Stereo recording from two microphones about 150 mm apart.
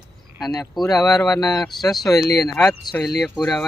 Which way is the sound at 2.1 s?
25° left (ahead or behind).